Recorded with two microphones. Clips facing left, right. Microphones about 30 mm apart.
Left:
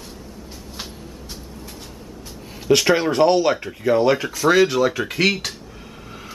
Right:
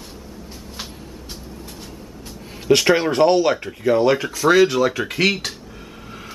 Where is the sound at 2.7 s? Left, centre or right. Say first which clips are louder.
Right 1 dB; centre.